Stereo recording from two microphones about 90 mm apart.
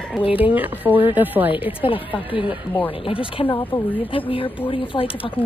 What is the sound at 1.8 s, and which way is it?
Speech, 75° left (ahead or behind).